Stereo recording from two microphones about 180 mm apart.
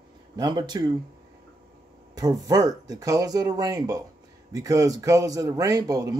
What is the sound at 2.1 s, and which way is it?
Speech, 20° right (ahead or behind).